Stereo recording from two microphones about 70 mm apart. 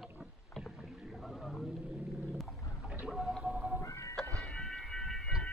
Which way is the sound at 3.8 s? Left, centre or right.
Left.